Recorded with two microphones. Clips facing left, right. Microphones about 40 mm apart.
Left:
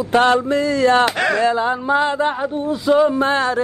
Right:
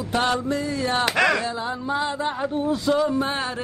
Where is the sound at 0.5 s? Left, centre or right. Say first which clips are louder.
Left 9 dB; left.